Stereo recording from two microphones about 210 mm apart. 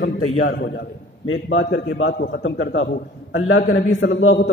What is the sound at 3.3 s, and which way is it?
A man's voice, 65° left (ahead or behind).